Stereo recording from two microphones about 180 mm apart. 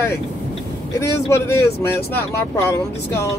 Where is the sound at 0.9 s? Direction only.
15° left (ahead or behind).